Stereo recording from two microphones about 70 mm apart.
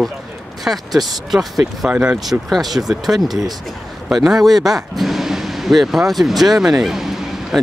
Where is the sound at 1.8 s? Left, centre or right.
Centre.